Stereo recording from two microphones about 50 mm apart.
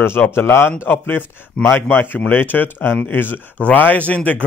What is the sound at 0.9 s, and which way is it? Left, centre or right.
Speech, left.